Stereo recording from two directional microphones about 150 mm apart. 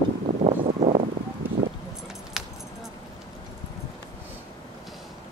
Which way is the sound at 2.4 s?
5° right (ahead or behind).